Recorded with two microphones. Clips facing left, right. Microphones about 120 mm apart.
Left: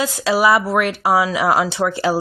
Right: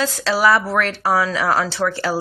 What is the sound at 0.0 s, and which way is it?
Speech, 15° left (ahead or behind).